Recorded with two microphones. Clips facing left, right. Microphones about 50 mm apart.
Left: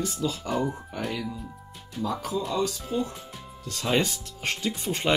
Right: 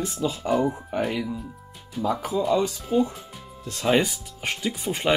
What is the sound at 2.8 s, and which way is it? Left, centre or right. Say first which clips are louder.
Speech: right 6 dB; centre.